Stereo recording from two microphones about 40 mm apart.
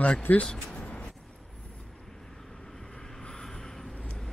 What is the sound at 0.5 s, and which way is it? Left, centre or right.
Speech, centre.